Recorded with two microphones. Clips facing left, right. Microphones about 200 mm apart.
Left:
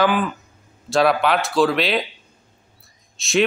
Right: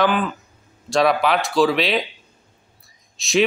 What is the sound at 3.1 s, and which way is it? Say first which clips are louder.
Speech: even; centre (ahead or behind).